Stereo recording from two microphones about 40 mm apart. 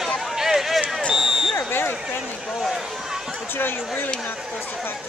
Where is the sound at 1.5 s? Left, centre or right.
Left.